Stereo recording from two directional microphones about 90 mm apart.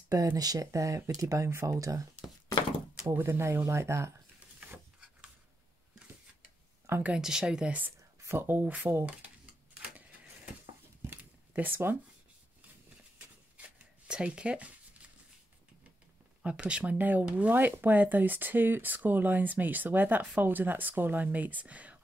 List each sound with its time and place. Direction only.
0.1 s speech: 45° right (ahead or behind)
3.1 s speech: 30° right (ahead or behind)
7.0 s speech: 10° right (ahead or behind)
8.2 s speech: 30° right (ahead or behind)
9.8 s a sound: 15° right (ahead or behind)
14.0 s a sound: 10° right (ahead or behind)
16.4 s speech: 10° right (ahead or behind)